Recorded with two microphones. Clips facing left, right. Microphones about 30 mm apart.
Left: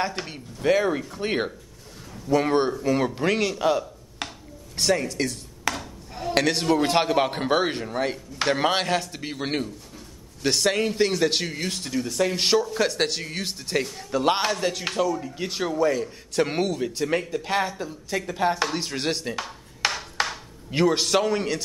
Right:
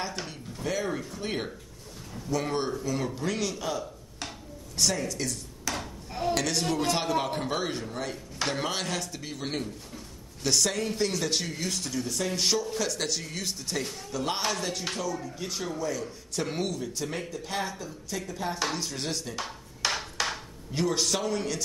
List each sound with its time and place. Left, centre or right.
0.3 s a man's voice: left
5.8 s dishes: centre
6.3 s a man's voice: left
20.2 s a sound: left
20.7 s a man's voice: left